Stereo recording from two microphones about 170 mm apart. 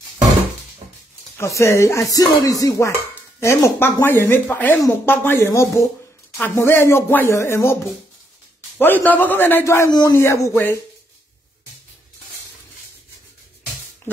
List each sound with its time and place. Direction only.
1.4 s music: 15° left (ahead or behind)